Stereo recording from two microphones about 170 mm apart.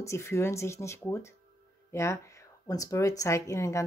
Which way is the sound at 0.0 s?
15° left (ahead or behind).